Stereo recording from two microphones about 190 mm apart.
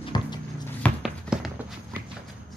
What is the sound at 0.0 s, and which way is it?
Music, 25° left (ahead or behind).